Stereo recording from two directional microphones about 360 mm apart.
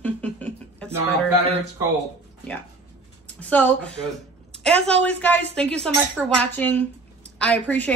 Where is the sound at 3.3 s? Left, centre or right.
Centre.